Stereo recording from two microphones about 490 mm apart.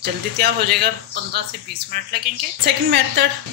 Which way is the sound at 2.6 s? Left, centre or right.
Right.